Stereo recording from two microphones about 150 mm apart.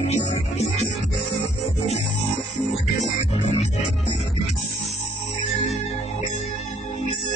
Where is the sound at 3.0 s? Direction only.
50° left (ahead or behind).